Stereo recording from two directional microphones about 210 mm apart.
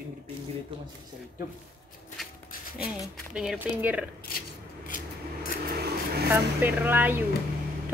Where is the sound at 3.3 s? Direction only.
5° right (ahead or behind).